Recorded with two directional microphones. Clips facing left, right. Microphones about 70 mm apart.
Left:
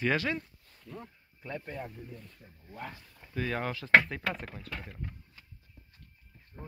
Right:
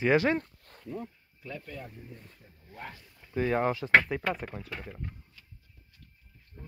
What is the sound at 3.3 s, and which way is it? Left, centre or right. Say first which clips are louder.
Speech: right 6 dB; right.